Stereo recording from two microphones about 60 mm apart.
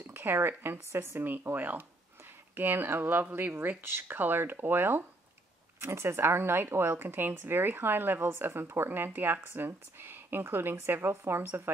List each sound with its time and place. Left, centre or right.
0.0 s speech: right